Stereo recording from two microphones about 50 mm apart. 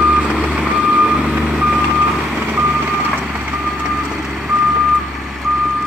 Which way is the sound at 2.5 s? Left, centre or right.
Right.